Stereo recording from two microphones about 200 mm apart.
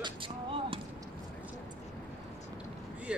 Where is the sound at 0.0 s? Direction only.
25° right (ahead or behind).